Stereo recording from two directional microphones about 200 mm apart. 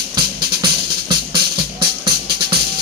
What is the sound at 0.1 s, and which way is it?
Music, 20° right (ahead or behind).